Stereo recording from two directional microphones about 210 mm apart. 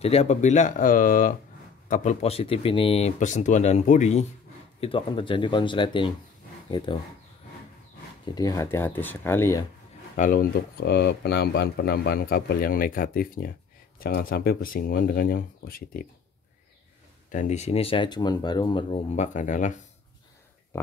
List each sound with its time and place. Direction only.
0.0 s speech: 30° left (ahead or behind)
8.4 s speech: 15° left (ahead or behind)
10.1 s speech: 40° left (ahead or behind)
17.3 s speech: 35° left (ahead or behind)